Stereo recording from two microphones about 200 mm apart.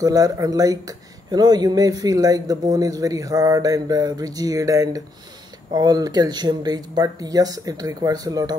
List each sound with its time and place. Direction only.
0.0 s speech: 20° right (ahead or behind)